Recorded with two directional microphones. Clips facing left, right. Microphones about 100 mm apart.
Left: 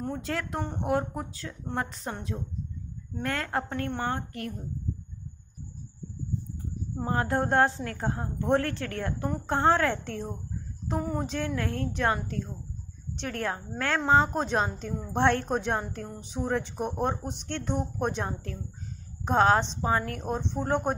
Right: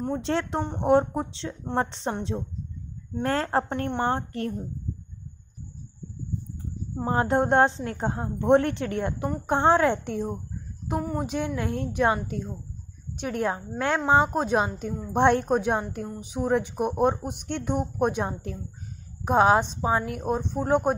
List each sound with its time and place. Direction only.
0.0 s a woman's voice: 25° right (ahead or behind)
7.1 s a woman's voice: 25° right (ahead or behind); by 20.9 s 5° right (ahead or behind)